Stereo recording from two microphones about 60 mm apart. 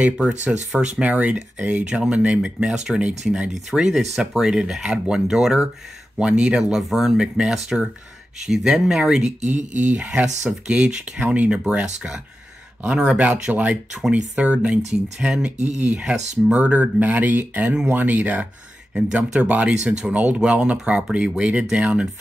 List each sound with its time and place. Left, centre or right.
0.7 s speech: centre
6.7 s speech: centre
9.8 s speech: right
13.5 s speech: right
19.7 s speech: centre